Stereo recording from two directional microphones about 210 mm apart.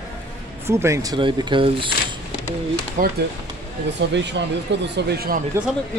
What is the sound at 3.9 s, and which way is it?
Speech, 55° right (ahead or behind).